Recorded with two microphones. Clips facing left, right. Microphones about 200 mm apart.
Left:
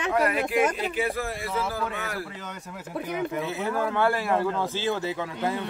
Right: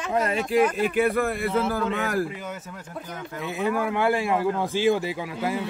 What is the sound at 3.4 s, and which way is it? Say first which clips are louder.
Speech: right 2 dB; 15° right (ahead or behind).